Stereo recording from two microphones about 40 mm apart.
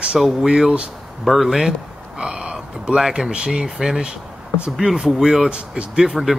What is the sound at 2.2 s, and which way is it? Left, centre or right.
Speech, right.